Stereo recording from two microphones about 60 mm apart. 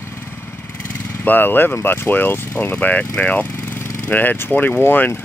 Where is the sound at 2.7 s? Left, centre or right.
Left.